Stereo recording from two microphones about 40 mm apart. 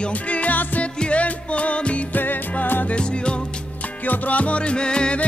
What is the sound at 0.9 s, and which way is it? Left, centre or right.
Music, left.